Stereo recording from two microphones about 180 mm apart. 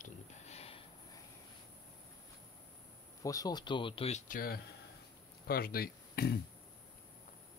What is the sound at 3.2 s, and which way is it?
Speech, 20° left (ahead or behind).